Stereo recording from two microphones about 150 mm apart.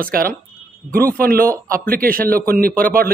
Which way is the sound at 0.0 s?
75° right (ahead or behind).